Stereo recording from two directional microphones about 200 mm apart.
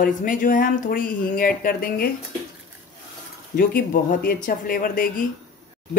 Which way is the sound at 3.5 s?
45° left (ahead or behind).